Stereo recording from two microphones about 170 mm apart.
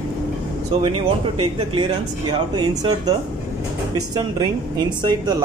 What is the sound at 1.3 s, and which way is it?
Speech, 30° right (ahead or behind).